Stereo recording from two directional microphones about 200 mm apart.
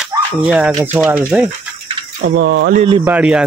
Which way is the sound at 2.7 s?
25° right (ahead or behind).